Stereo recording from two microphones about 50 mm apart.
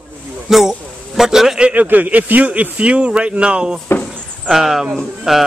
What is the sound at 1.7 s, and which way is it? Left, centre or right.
Speech, right.